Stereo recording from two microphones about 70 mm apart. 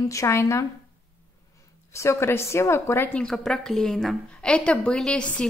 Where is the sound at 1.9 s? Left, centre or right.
Left.